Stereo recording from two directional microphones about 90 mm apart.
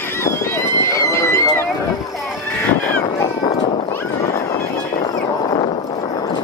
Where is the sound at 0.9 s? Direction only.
30° left (ahead or behind).